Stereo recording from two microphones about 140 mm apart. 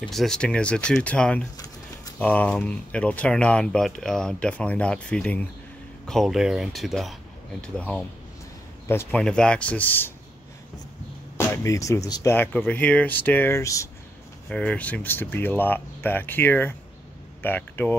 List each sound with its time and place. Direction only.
0.0 s speech: 5° left (ahead or behind)
8.8 s speech: 20° left (ahead or behind)
9.2 s speech: 5° left (ahead or behind)
11.3 s speech: 20° left (ahead or behind)
12.4 s speech: 15° left (ahead or behind)
14.5 s speech: 10° left (ahead or behind)